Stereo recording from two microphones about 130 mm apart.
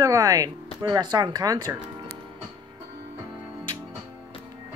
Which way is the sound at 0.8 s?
30° right (ahead or behind).